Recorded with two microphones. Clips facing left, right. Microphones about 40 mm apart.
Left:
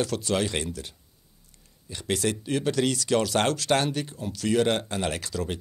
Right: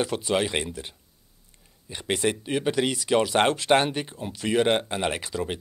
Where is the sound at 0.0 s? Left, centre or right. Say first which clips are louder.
Right 1 dB; right.